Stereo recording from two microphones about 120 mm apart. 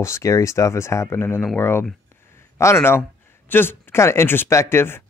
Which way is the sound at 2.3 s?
20° left (ahead or behind).